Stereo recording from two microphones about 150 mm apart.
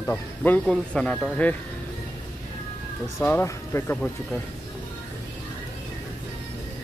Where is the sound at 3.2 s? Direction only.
15° left (ahead or behind).